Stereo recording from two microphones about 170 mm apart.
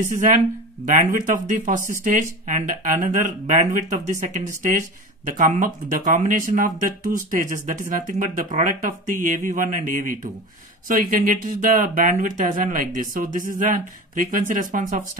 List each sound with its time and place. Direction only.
0.8 s speech: 45° right (ahead or behind)